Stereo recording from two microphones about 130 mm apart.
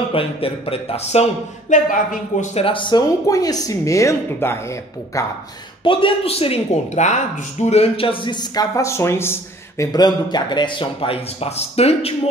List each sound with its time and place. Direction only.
0.1 s speech: 45° left (ahead or behind)
1.7 s speech: 75° left (ahead or behind)
2.4 s speech: 50° left (ahead or behind)
3.3 s a woman's voice: 30° left (ahead or behind)
5.9 s speech: 40° left (ahead or behind); by 9.8 s 20° left (ahead or behind)
9.9 s speech: 30° left (ahead or behind); by 12.1 s 50° left (ahead or behind)